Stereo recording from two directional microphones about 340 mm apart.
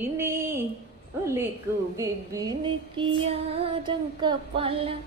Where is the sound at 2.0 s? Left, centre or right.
Centre.